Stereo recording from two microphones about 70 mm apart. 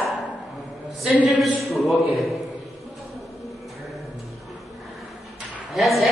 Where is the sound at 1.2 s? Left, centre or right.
Centre.